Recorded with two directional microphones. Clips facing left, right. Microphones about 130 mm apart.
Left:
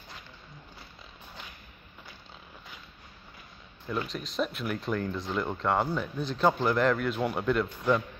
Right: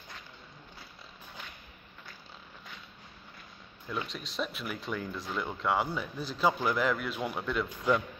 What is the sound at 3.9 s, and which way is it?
A man's voice, centre (ahead or behind).